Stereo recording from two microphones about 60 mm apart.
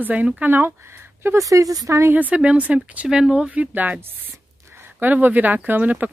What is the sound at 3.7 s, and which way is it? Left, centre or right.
Speech, right.